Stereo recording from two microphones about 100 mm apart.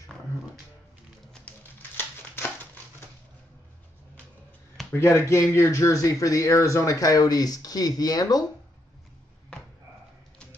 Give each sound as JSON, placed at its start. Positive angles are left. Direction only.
{"t": 1.3, "sound": "scissors", "side_deg": 15}
{"t": 4.9, "sound": "speech", "side_deg": 30}